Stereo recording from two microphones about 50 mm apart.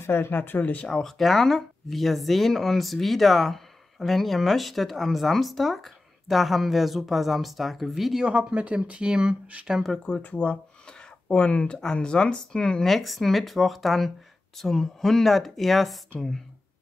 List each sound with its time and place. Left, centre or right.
0.0 s speech: left
0.4 s speech: left
0.8 s speech: centre
1.1 s speech: centre
8.3 s speech: right
10.2 s speech: left
10.5 s a sound: left
11.8 s speech: centre
12.8 s speech: centre